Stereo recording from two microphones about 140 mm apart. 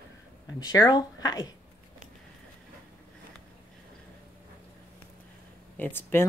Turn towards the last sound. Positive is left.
turn(degrees=15)  # may be behind; listen again after turning